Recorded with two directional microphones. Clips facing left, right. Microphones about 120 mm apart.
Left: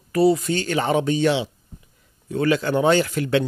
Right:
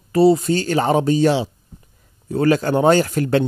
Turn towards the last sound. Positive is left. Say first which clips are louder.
# right 3 dB
turn(degrees=-40)  # may be behind; listen again after turning